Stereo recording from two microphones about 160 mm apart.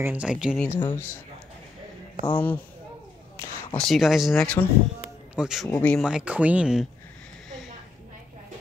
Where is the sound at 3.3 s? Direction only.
15° left (ahead or behind).